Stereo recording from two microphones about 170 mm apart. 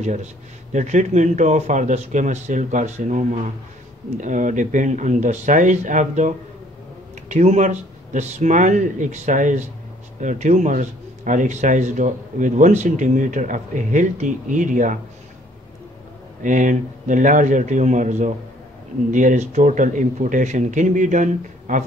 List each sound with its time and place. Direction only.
0.0 s a man's voice: 40° right (ahead or behind)
16.4 s a man's voice: 50° right (ahead or behind)